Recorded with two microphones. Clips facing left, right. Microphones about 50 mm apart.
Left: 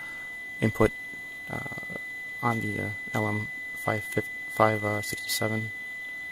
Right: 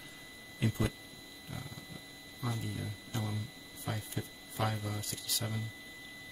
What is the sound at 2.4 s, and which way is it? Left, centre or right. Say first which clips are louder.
Speech: left 11 dB; left.